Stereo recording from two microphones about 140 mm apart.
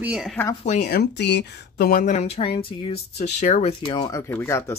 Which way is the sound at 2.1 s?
45° left (ahead or behind).